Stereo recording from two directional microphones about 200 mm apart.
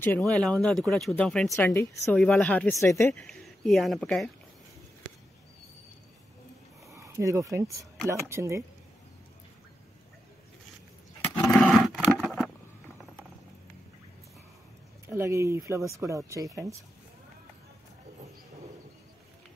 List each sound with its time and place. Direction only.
0.0 s speech: 5° left (ahead or behind)
3.2 s speech: 5° left (ahead or behind)
6.9 s speech: 15° right (ahead or behind)
11.1 s a sound: 5° left (ahead or behind)
15.0 s speech: 15° right (ahead or behind)